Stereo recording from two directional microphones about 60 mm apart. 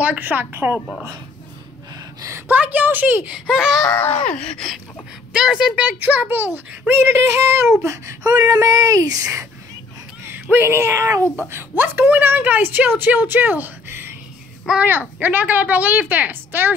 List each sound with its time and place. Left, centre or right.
0.0 s a woman's voice: right
2.2 s a woman's voice: right
2.5 s a woman's voice: right
3.3 s speech: centre
4.4 s a sound: centre
5.3 s speech: centre
5.8 s a woman's voice: right
6.9 s a sound: right
7.8 s speech: right
10.6 s a sound: right
11.4 s a woman's voice: right